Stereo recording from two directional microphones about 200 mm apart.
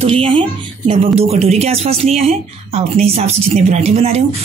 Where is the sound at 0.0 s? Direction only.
25° right (ahead or behind).